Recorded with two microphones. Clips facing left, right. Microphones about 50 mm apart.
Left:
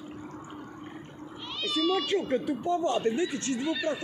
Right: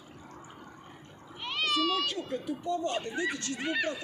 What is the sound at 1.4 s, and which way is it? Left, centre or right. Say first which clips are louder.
Cat: right 4 dB; right.